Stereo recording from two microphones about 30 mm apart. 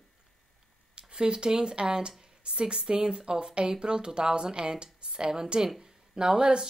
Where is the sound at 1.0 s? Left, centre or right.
Right.